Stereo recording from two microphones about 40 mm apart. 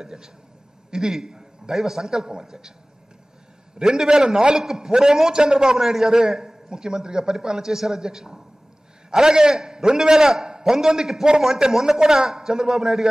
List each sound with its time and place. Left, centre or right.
0.0 s a man's voice: centre
3.7 s a man's voice: centre